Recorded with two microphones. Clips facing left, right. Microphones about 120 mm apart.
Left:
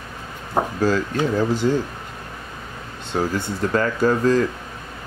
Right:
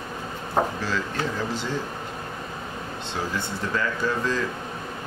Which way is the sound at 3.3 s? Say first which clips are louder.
Left 6 dB; 45° left (ahead or behind).